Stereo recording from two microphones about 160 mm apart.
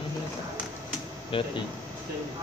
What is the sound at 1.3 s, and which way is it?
Speech, 35° left (ahead or behind).